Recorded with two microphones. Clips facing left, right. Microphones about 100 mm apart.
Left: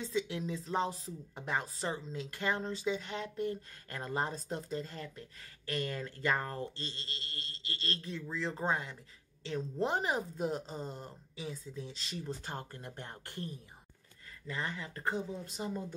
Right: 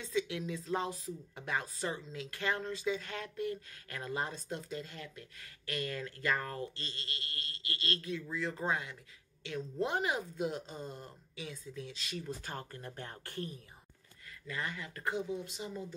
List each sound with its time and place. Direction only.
0.0 s speech: 30° left (ahead or behind)